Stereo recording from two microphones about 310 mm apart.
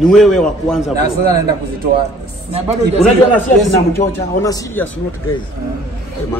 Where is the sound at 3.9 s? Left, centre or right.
Centre.